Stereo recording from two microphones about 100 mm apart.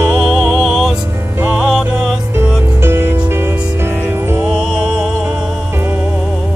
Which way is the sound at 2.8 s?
25° right (ahead or behind).